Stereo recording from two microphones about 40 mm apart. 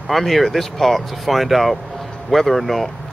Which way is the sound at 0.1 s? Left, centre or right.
Centre.